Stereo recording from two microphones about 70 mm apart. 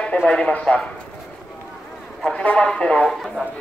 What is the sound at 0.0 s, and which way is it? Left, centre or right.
Speech, centre.